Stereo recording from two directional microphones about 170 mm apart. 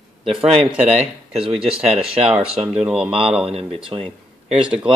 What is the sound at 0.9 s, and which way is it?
Speech, 5° right (ahead or behind).